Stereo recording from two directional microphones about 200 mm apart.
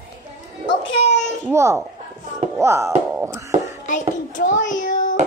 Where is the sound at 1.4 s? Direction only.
15° right (ahead or behind).